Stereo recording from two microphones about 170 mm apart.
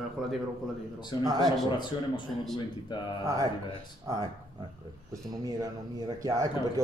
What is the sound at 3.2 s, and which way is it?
Speech, 20° right (ahead or behind).